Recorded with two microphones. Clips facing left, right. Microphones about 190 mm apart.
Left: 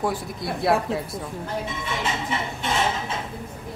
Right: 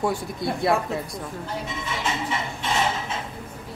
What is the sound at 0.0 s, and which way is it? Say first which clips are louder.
Speech: right 1 dB; centre (ahead or behind).